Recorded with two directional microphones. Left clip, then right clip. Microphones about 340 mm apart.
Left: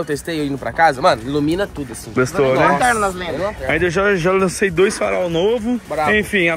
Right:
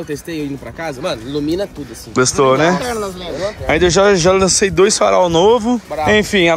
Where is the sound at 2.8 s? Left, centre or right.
Left.